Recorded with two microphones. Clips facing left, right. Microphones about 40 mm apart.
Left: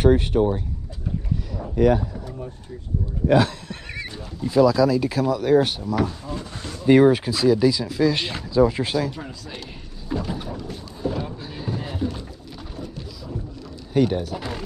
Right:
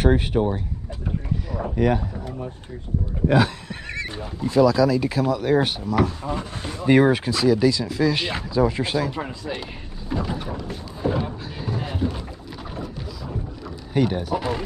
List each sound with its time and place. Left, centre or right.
0.0 s boat: centre
1.8 s boat: centre
3.3 s boat: centre
4.5 s speech: centre
6.2 s speech: right
6.9 s boat: centre
7.2 s speech: centre
9.1 s speech: right
10.0 s boat: centre
11.0 s speech: right
11.5 s a sound: centre
13.9 s boat: centre